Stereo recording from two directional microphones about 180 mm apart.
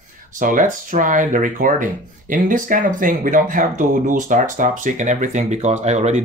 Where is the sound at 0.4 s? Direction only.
45° right (ahead or behind).